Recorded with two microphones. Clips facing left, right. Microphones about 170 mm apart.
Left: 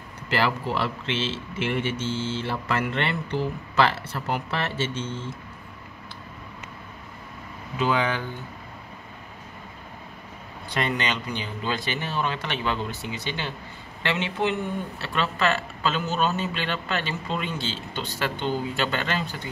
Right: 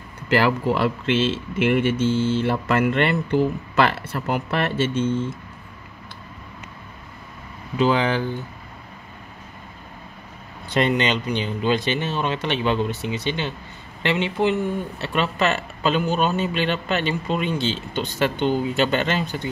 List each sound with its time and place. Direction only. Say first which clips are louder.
0.3 s speech: right 6 dB; 50° right (ahead or behind)
7.8 s speech: right 5 dB; 30° right (ahead or behind)
10.7 s a man's voice: right 7 dB; 25° right (ahead or behind)